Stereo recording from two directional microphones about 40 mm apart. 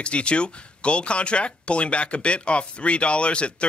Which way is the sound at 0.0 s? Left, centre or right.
Left.